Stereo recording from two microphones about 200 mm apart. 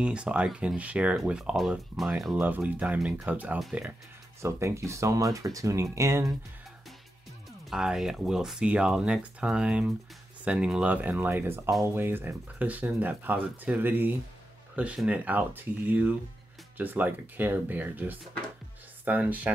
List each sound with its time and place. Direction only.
0.0 s speech: 5° right (ahead or behind)
7.7 s speech: centre (ahead or behind)